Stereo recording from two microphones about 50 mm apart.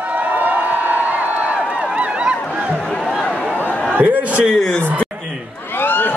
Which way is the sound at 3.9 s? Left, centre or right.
Right.